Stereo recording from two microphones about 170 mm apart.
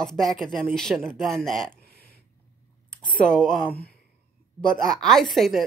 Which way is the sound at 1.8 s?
65° left (ahead or behind).